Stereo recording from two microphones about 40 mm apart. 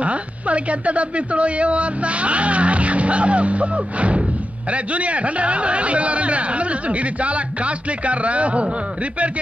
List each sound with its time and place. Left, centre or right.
0.0 s a woman's voice: right